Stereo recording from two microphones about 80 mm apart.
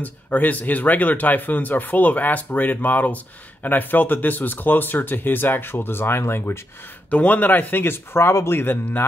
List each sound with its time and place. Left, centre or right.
0.0 s speech: left
7.1 s speech: centre